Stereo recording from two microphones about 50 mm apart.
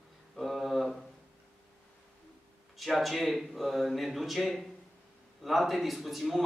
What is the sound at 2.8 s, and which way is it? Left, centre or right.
A man's voice, centre.